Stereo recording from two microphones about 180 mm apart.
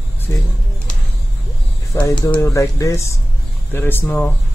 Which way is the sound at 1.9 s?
15° left (ahead or behind).